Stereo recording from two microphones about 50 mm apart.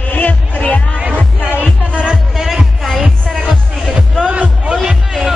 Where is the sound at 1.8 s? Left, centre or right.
Right.